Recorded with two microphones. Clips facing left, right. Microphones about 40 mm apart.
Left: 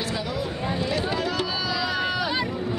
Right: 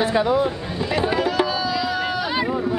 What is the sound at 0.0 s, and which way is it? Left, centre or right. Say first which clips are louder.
Speech: right 10 dB; right.